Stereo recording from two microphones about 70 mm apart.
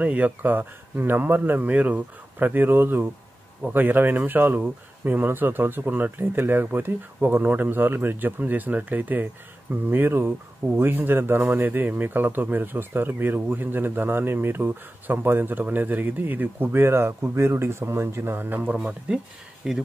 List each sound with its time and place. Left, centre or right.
0.0 s speech: right